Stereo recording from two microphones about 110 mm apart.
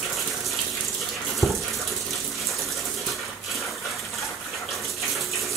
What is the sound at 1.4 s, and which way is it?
Water tap, 25° left (ahead or behind).